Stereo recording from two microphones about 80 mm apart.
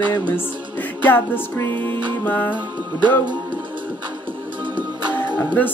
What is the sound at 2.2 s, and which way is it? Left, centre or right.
Speech, left.